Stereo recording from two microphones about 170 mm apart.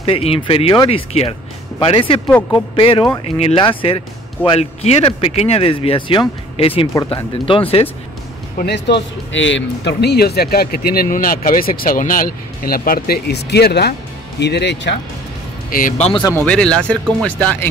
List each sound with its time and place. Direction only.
0.0 s speech: 35° left (ahead or behind)
2.2 s speech: 10° left (ahead or behind)
2.7 s speech: 30° left (ahead or behind)
6.9 s speech: 20° left (ahead or behind)
7.4 s speech: 30° left (ahead or behind)
8.5 s speech: 80° left
16.0 s speech: 30° left (ahead or behind)
16.4 s speech: 5° left (ahead or behind)